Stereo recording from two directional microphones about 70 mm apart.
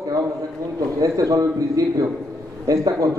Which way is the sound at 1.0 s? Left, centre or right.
Right.